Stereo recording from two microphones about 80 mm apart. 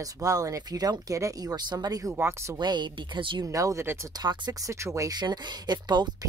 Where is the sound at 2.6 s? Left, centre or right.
Right.